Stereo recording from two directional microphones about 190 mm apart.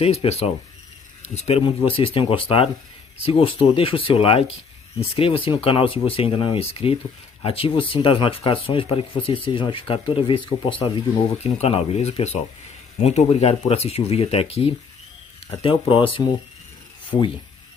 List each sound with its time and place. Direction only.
0.0 s speech: 30° left (ahead or behind)